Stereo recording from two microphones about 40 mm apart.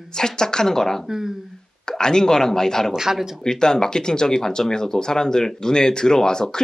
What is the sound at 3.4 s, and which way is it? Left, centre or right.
Speech, centre.